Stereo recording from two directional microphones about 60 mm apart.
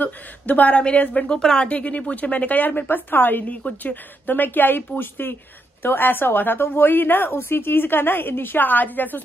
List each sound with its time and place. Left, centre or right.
0.0 s a woman's voice: left